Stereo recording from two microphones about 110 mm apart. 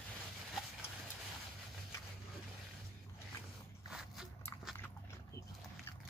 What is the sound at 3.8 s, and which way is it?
Biting, 5° right (ahead or behind).